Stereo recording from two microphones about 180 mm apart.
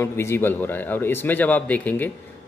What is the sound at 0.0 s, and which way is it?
Speech, 15° left (ahead or behind).